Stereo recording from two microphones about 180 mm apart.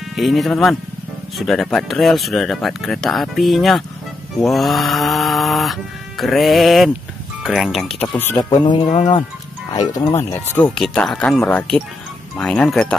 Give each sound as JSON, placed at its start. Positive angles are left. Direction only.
{"t": 0.1, "sound": "snoring", "side_deg": 0}
{"t": 8.4, "sound": "speech", "side_deg": 25}
{"t": 10.7, "sound": "snoring", "side_deg": 0}